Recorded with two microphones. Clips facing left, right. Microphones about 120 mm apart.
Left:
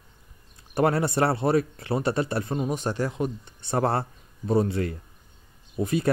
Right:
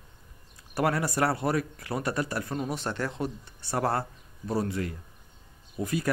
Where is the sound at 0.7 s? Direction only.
25° left (ahead or behind).